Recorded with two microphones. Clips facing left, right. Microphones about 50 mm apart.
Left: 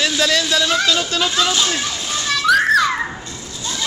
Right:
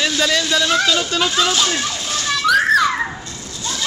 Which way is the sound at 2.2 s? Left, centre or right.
Centre.